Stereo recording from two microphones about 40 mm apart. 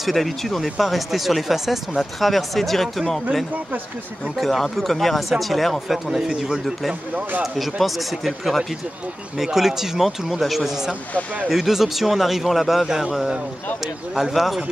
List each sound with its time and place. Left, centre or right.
0.0 s speech: centre
4.4 s a man's voice: centre
7.8 s a man's voice: centre
14.3 s speech: centre